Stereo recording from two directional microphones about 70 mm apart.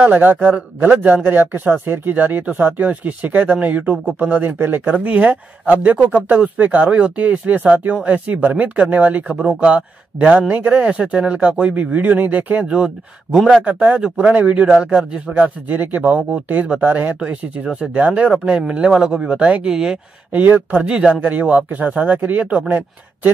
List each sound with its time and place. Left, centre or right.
0.0 s speech: right
9.3 s speech: centre
9.6 s speech: centre
20.3 s speech: right